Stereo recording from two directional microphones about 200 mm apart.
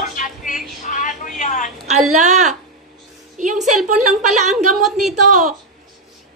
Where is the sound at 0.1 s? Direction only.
40° left (ahead or behind).